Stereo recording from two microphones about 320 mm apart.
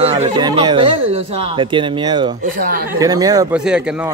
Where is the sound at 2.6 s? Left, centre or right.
Right.